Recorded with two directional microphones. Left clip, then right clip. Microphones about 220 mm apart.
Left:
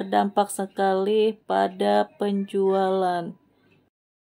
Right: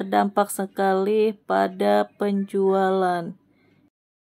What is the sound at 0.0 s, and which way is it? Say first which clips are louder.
Speech: right 1 dB; 10° right (ahead or behind).